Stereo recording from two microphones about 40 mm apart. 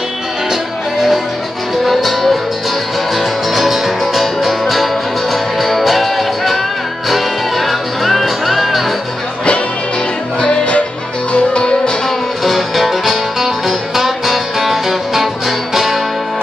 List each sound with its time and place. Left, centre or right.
1.9 s music: centre
10.4 s music: left
12.4 s music: centre